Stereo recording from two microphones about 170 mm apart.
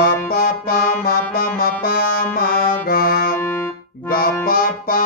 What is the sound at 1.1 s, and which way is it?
Music, 60° left (ahead or behind).